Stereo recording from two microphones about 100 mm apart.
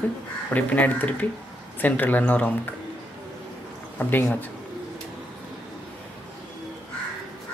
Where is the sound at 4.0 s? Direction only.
20° left (ahead or behind).